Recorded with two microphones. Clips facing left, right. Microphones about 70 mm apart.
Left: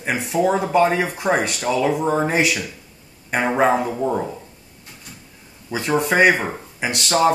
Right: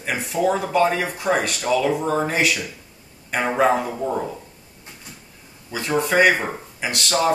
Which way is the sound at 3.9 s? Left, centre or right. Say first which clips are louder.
Left 2 dB; centre.